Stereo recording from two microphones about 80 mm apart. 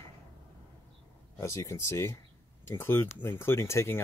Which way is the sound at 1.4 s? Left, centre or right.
Left.